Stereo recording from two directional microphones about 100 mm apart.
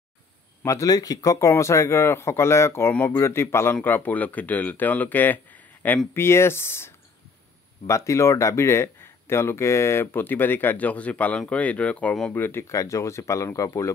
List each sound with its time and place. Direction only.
0.7 s speech: 35° left (ahead or behind)